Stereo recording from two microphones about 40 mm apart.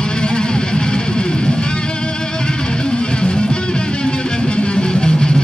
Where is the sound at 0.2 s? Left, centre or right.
Left.